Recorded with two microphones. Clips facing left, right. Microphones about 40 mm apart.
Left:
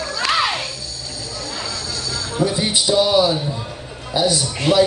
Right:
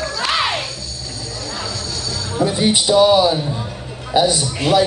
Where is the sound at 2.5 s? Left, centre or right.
Right.